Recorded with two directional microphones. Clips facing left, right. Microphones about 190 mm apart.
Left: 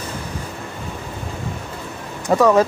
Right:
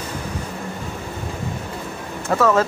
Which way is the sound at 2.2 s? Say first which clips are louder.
Left 3 dB; 15° left (ahead or behind).